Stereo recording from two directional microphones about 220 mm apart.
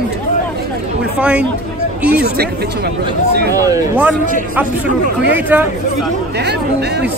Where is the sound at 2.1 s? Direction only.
45° right (ahead or behind).